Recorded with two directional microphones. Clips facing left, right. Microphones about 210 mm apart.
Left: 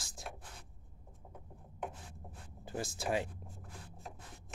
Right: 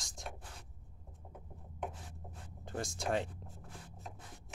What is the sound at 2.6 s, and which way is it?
Speech, 5° left (ahead or behind).